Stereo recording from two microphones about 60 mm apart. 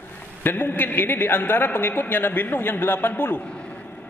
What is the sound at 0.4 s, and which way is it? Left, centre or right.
A man's voice, left.